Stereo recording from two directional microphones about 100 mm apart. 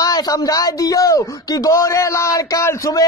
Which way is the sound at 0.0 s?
40° left (ahead or behind).